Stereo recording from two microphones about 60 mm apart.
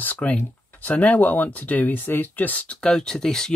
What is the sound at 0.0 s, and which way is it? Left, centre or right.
Speech, left.